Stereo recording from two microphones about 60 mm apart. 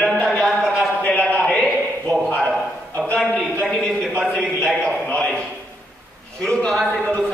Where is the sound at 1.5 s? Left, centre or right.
Centre.